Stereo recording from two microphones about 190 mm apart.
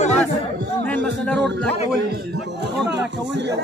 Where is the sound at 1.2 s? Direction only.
5° left (ahead or behind).